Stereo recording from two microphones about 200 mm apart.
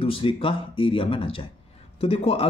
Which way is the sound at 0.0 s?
25° left (ahead or behind).